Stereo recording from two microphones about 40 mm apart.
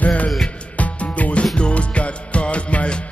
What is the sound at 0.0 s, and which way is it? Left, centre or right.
Music, left.